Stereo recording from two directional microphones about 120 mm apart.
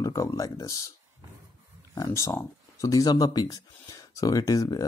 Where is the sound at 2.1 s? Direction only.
25° left (ahead or behind).